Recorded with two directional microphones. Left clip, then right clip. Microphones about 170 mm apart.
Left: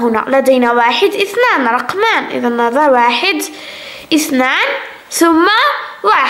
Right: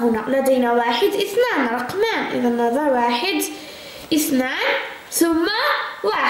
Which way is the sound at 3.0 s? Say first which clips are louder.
Left 8 dB; 5° right (ahead or behind).